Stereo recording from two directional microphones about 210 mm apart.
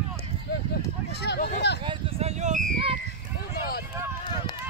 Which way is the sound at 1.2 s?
50° left (ahead or behind).